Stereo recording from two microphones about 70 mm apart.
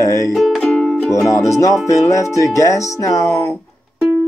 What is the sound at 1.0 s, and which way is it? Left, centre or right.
Speech, left.